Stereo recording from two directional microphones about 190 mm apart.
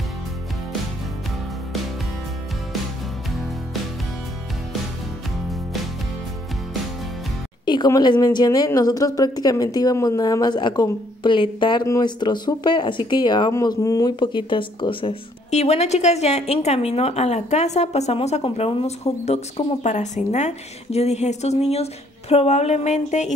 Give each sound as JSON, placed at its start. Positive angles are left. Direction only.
{"t": 7.6, "sound": "a woman's voice", "side_deg": 20}